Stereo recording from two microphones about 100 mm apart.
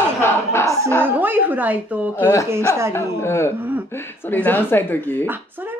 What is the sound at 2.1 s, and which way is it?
Speech, 25° left (ahead or behind).